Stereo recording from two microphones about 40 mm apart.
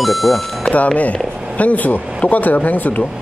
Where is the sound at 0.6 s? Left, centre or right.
Left.